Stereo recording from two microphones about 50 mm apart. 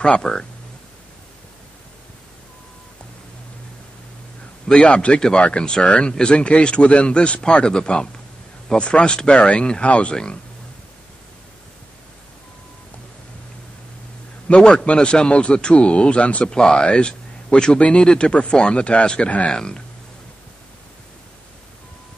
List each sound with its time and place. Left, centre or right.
0.0 s speech: centre
4.7 s speech: left
14.5 s speech: centre